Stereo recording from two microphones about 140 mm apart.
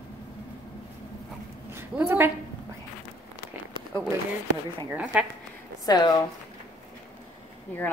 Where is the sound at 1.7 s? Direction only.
15° right (ahead or behind).